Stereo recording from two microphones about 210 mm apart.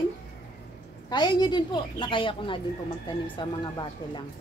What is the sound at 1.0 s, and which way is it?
Speech, 20° left (ahead or behind).